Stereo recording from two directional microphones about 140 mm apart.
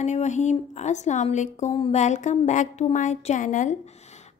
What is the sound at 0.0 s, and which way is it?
A woman's voice, 55° left (ahead or behind).